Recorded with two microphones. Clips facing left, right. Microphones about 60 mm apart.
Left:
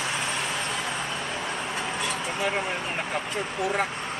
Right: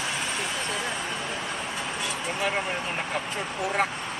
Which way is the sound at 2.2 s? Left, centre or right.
Centre.